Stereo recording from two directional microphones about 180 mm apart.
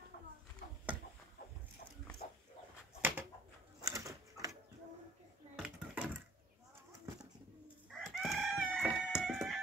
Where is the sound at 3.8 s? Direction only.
20° right (ahead or behind).